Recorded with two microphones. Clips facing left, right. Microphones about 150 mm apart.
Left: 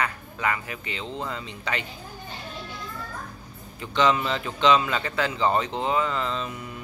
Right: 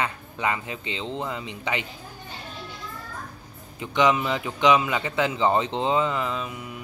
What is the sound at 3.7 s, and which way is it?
Speech, 15° right (ahead or behind).